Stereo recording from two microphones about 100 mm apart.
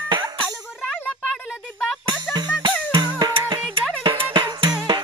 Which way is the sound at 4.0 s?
55° right (ahead or behind).